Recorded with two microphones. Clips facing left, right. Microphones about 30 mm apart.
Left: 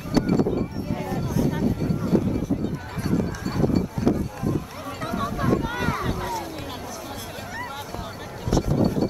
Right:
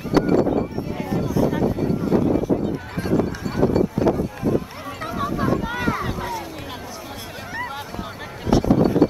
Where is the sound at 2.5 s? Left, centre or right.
Right.